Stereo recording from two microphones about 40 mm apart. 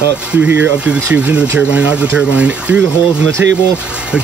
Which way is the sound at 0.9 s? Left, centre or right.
Right.